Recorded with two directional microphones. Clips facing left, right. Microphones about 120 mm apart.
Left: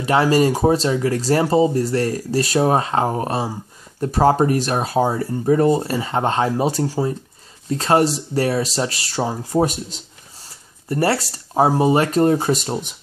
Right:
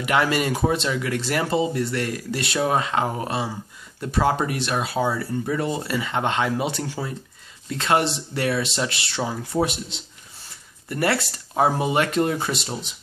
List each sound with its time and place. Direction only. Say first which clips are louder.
0.0 s speech: left 6 dB; 35° left (ahead or behind)